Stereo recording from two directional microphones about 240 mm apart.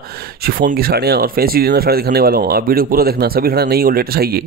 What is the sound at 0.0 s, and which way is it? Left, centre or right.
Speech, right.